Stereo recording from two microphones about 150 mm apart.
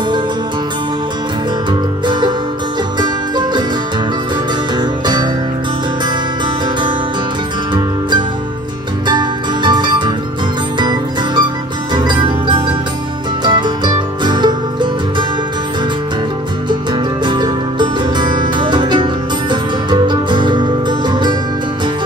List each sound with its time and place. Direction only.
1.7 s music: 30° right (ahead or behind)
4.7 s music: 30° right (ahead or behind)
9.0 s music: 30° right (ahead or behind)
16.6 s music: 30° right (ahead or behind)